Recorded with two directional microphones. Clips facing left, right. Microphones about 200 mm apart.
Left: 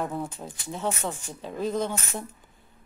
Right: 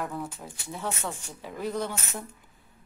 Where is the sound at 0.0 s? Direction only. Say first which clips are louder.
Left 3 dB; 25° left (ahead or behind).